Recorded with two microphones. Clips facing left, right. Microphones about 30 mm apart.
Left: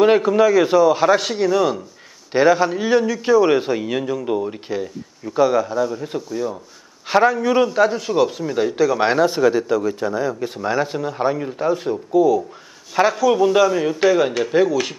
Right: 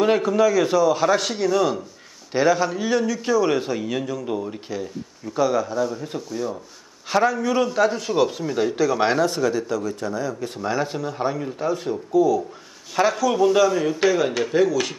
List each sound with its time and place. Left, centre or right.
0.0 s a man's voice: centre
7.1 s a man's voice: centre